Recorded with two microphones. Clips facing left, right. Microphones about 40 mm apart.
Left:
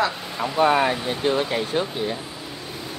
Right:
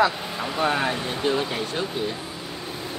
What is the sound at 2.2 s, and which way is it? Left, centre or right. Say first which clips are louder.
Air conditioning: right 1 dB; centre.